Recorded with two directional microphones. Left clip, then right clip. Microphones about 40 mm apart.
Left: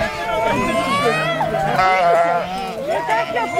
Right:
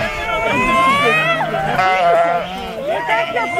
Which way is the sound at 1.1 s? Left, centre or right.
Right.